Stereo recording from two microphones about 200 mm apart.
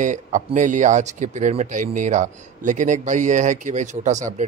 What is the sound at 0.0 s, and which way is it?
Speech, 40° right (ahead or behind).